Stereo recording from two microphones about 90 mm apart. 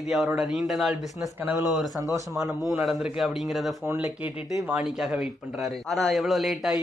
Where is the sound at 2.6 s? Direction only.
Centre (ahead or behind).